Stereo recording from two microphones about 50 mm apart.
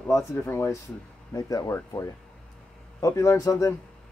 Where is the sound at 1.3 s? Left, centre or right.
Left.